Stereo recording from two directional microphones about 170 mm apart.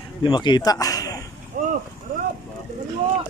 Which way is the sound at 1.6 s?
50° right (ahead or behind).